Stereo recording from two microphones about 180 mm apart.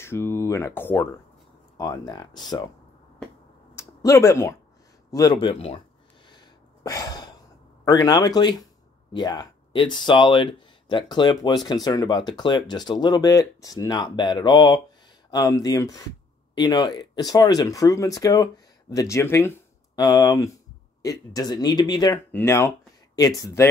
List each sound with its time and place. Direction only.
0.0 s speech: 15° left (ahead or behind)
1.8 s speech: 20° left (ahead or behind)
3.7 s speech: 15° left (ahead or behind)
6.3 s a sound: 20° left (ahead or behind)
7.8 s speech: 20° left (ahead or behind)